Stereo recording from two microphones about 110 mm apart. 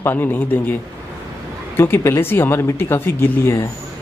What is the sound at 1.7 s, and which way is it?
Speech, 20° left (ahead or behind).